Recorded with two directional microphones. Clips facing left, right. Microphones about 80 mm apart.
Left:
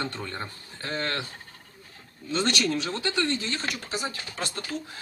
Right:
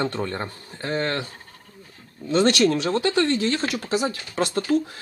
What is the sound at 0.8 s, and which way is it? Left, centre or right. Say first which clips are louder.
Speech: right 6 dB; right.